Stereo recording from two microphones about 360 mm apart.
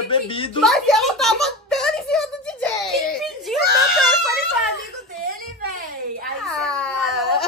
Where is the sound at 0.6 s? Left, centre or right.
Centre.